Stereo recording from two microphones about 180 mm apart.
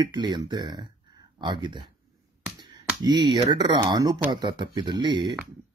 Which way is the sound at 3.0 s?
25° right (ahead or behind).